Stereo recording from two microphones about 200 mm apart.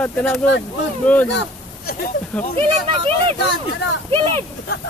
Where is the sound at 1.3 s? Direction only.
55° left (ahead or behind).